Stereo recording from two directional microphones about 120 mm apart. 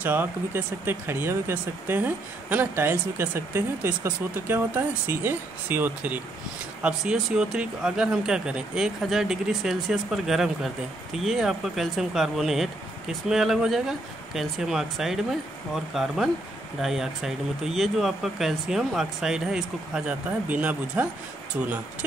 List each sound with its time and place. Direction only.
0.0 s speech: 15° right (ahead or behind)